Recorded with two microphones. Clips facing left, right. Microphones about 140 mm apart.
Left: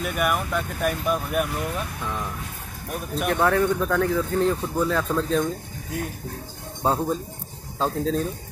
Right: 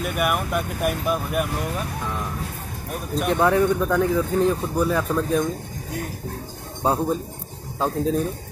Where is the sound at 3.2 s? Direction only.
15° right (ahead or behind).